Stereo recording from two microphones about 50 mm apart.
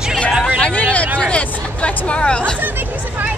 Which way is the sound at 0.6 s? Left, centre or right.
Left.